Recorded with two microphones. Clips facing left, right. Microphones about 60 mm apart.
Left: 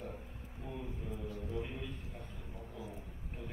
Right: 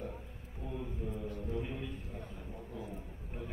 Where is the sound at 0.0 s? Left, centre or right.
Right.